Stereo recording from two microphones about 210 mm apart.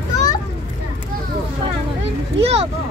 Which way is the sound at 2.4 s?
30° right (ahead or behind).